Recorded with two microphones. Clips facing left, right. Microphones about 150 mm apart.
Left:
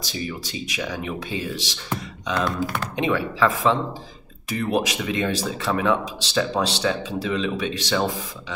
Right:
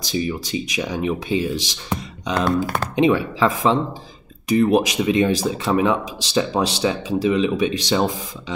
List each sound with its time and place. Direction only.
0.1 s speech: 15° right (ahead or behind)
2.6 s speech: 45° right (ahead or behind)
3.0 s speech: 20° right (ahead or behind)